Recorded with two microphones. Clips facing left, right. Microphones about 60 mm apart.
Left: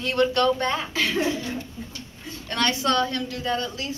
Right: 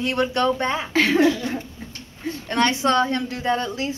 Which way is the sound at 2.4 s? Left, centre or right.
Right.